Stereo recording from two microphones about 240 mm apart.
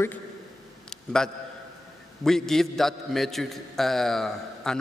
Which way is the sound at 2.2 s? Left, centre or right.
Centre.